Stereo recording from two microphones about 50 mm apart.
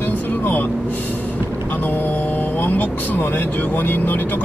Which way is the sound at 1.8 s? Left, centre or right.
Left.